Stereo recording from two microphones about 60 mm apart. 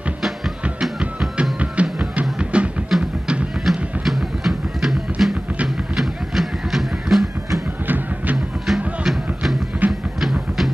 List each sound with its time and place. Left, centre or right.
0.7 s music: centre
2.1 s music: centre
2.9 s music: centre
3.6 s a sound: centre
5.2 s music: centre
8.6 s music: centre
9.8 s music: right
10.2 s music: centre